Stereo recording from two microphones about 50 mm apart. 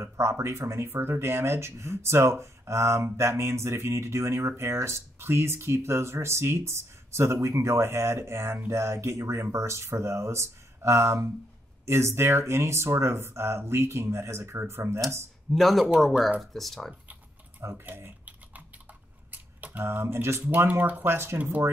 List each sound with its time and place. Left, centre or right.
0.0 s speech: right
0.8 s speech: right
8.6 s speech: right
11.8 s speech: right
15.5 s speech: centre
17.6 s speech: right
19.3 s camera: right
19.8 s speech: right
21.4 s speech: right